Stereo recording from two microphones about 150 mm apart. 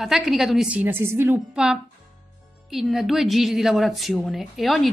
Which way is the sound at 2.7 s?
Centre (ahead or behind).